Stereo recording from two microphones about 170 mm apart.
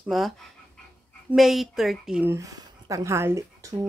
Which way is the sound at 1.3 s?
Centre (ahead or behind).